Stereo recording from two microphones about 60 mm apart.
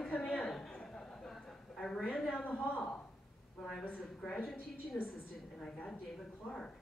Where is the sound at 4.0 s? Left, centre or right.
Centre.